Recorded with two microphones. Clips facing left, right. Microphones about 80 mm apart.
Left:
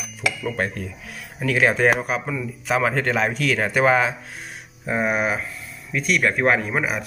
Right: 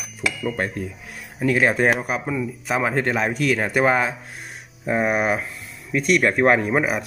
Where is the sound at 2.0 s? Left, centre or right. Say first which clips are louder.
Right 1 dB; centre.